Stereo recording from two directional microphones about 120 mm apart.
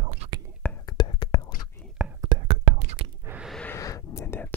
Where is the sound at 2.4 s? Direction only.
55° right (ahead or behind).